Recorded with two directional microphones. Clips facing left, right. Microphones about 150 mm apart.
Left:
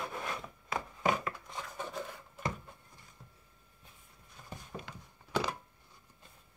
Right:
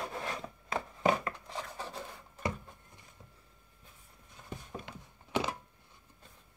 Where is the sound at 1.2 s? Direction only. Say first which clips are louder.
Right 1 dB; 35° right (ahead or behind).